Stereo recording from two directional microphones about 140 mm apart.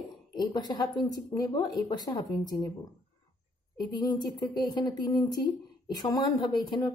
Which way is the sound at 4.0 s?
30° left (ahead or behind).